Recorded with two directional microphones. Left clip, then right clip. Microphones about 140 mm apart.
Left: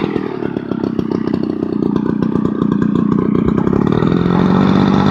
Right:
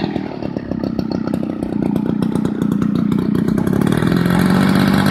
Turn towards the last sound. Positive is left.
turn(degrees=-30)  # may be behind; listen again after turning